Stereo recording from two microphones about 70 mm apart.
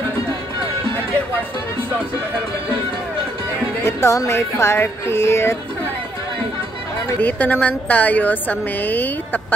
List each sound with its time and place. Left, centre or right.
3.8 s music: left
7.2 s a woman's voice: left